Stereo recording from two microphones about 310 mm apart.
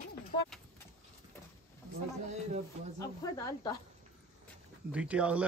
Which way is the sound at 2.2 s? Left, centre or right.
Right.